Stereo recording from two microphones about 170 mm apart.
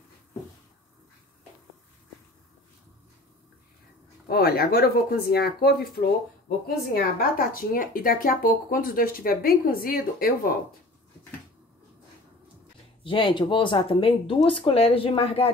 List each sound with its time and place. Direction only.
4.3 s speech: 65° left (ahead or behind)
6.9 s speech: 60° left (ahead or behind)
13.0 s speech: 30° left (ahead or behind)